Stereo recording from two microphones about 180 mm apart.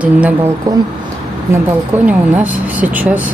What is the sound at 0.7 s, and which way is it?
Speech, 20° right (ahead or behind).